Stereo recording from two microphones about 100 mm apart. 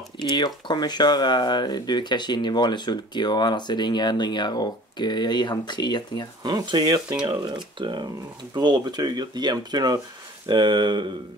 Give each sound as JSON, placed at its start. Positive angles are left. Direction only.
{"t": 0.2, "sound": "speech", "side_deg": 50}
{"t": 6.4, "sound": "speech", "side_deg": -50}